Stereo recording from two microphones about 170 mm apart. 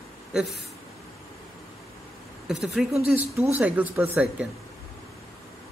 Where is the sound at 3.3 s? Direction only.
15° right (ahead or behind).